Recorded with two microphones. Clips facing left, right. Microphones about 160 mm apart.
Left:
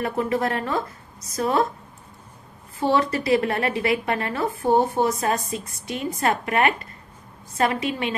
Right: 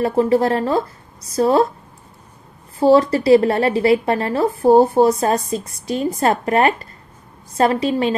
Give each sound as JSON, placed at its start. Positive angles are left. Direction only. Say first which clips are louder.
{"t": 0.0, "sound": "a woman's voice", "louder": "right 8 dB", "side_deg": -30}
{"t": 2.8, "sound": "a woman's voice", "louder": "right 8 dB", "side_deg": -35}